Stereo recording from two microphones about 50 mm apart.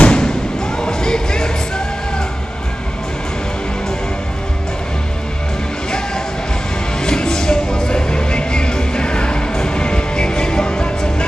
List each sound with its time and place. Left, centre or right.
0.0 s thump: centre
5.9 s music: centre